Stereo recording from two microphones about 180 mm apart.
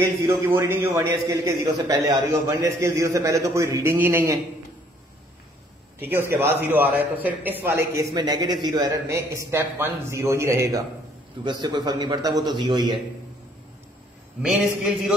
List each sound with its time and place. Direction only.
0.0 s a man's voice: 15° right (ahead or behind)
5.9 s a man's voice: 10° right (ahead or behind)
14.4 s a man's voice: centre (ahead or behind)